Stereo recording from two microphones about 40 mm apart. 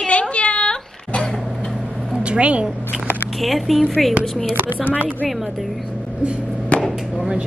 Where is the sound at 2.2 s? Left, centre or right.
Right.